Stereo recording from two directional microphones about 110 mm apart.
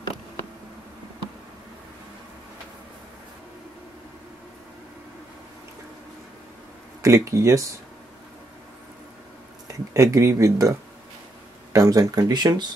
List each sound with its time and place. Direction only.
7.0 s speech: 25° right (ahead or behind)
9.7 s speech: 30° right (ahead or behind)
11.7 s speech: 30° right (ahead or behind)